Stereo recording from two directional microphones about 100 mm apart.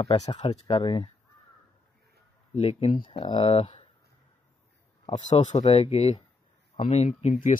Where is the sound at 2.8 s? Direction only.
65° left (ahead or behind).